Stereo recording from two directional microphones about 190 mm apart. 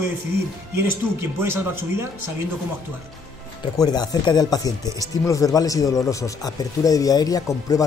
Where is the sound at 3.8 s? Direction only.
20° left (ahead or behind).